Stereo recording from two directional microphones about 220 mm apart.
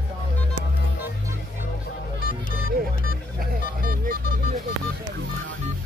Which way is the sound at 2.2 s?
40° left (ahead or behind).